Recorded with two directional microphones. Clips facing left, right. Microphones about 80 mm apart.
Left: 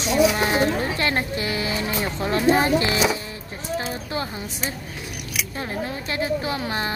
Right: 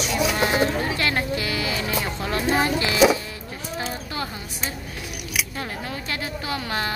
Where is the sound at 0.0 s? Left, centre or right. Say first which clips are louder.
Left 3 dB; left.